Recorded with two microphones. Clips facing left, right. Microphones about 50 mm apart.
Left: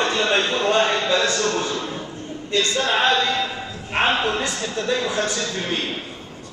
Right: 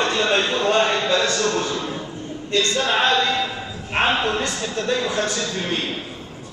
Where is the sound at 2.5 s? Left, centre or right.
Centre.